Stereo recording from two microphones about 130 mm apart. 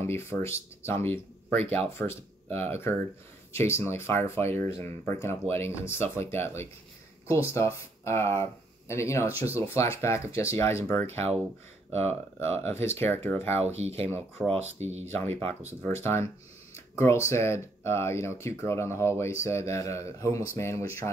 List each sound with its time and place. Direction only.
0.0 s speech: 20° left (ahead or behind)
13.7 s speech: 55° right (ahead or behind)
14.0 s speech: 15° left (ahead or behind)
14.5 s speech: 55° right (ahead or behind)
15.0 s speech: 15° left (ahead or behind)